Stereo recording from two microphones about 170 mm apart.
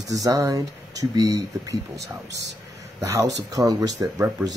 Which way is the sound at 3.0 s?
15° right (ahead or behind).